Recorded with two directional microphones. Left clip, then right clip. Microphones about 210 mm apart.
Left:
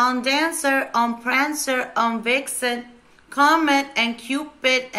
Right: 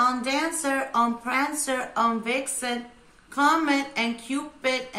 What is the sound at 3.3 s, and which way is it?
Speech, centre (ahead or behind).